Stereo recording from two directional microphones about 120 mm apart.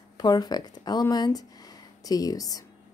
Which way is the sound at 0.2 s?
35° left (ahead or behind).